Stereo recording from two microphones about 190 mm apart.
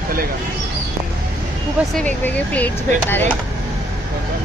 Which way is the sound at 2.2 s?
10° left (ahead or behind).